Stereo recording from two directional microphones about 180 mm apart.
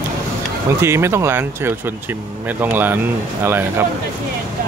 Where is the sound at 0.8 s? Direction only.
15° right (ahead or behind).